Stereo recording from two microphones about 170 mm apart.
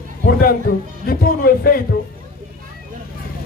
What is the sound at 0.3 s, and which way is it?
A man's voice, 60° left (ahead or behind).